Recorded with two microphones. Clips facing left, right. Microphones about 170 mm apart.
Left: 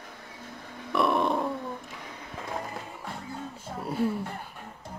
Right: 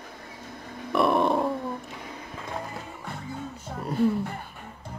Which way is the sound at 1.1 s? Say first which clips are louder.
Right 4 dB; 30° right (ahead or behind).